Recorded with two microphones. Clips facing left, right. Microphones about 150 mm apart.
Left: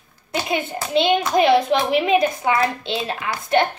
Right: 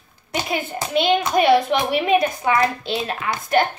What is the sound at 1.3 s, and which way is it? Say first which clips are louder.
A child's voice: even; 25° left (ahead or behind).